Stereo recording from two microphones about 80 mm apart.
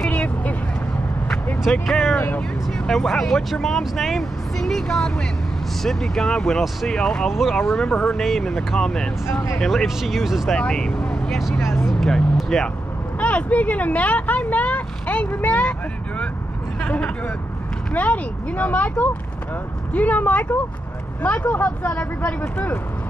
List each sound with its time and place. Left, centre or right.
0.0 s vehicle: centre
1.6 s speech: centre
2.1 s speech: left
2.9 s speech: centre
9.3 s speech: left
9.6 s speech: centre
10.6 s speech: centre
11.6 s speech: left
11.9 s speech: centre
13.2 s speech: centre
16.8 s a sound: centre
17.9 s speech: centre